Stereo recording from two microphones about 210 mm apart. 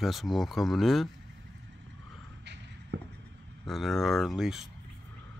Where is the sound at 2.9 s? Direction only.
55° right (ahead or behind).